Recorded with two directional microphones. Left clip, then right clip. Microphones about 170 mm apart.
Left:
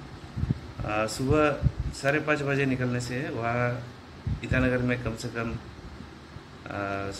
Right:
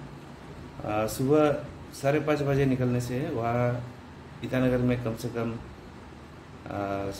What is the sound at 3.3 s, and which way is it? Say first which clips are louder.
Speech: even; centre (ahead or behind).